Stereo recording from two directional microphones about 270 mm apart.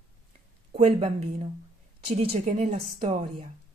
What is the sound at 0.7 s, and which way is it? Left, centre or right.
A woman's voice, right.